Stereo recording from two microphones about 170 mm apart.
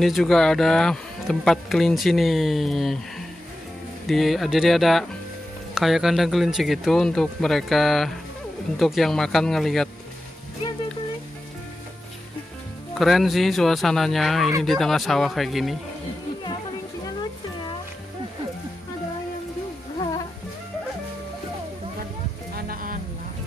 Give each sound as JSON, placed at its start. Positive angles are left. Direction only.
{"t": 0.0, "sound": "speech", "side_deg": 0}
{"t": 12.9, "sound": "speech", "side_deg": 0}
{"t": 22.6, "sound": "music", "side_deg": -55}